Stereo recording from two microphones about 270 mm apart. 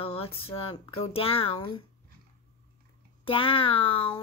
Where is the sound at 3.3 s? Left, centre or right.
Centre.